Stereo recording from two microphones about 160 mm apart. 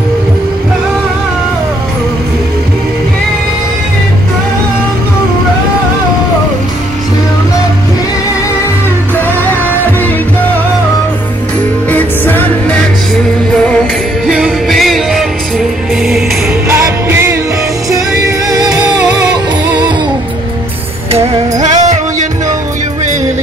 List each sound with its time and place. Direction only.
11.9 s music: 10° left (ahead or behind)
14.2 s music: centre (ahead or behind)
16.6 s music: 15° right (ahead or behind)
18.5 s music: 25° right (ahead or behind)
21.1 s music: 45° right (ahead or behind)